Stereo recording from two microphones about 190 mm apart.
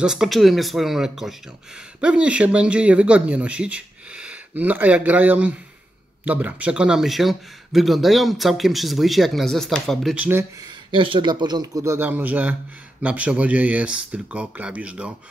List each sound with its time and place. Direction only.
0.0 s speech: centre (ahead or behind)
10.6 s speech: 25° right (ahead or behind); by 15.1 s 5° right (ahead or behind)